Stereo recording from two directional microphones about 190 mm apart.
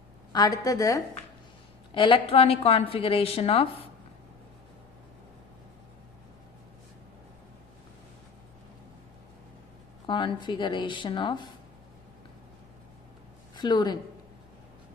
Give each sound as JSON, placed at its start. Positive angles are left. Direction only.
{"t": 0.3, "sound": "a woman's voice", "side_deg": 20}
{"t": 10.0, "sound": "a woman's voice", "side_deg": 25}
{"t": 13.6, "sound": "speech", "side_deg": 20}